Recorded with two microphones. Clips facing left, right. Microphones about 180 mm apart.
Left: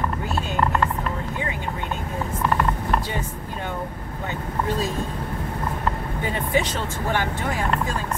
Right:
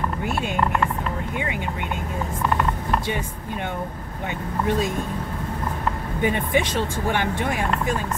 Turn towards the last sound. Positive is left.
turn(degrees=-20)  # may be behind; listen again after turning